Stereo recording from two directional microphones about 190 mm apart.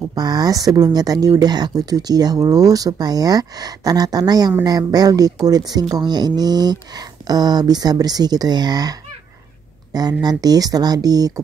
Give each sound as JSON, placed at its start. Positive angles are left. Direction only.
{"t": 0.1, "sound": "speech", "side_deg": -20}
{"t": 9.9, "sound": "speech", "side_deg": -20}